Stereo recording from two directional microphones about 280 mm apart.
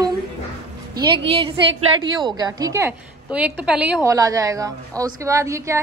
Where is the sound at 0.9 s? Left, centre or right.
Centre.